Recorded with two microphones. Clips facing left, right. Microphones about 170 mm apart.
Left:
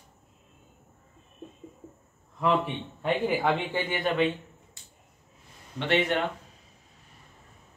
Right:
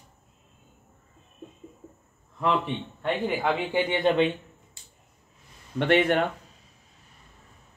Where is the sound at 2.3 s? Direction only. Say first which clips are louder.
Even; 5° left (ahead or behind).